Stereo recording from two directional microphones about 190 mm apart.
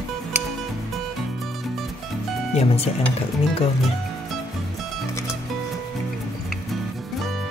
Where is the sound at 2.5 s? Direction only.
30° left (ahead or behind).